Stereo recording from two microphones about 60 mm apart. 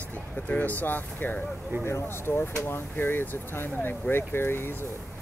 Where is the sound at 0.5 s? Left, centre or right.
Left.